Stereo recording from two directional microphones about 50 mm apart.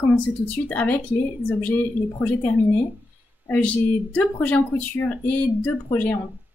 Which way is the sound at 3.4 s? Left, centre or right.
Left.